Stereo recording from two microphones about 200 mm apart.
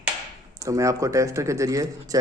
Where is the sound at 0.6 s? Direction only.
15° right (ahead or behind).